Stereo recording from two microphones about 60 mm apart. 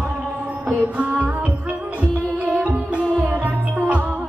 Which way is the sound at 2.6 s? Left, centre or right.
Right.